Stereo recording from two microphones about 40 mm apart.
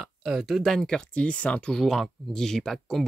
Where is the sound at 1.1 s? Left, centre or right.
Left.